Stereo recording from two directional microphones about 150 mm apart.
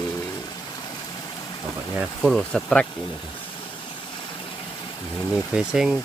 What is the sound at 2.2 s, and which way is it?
Speech, 5° left (ahead or behind).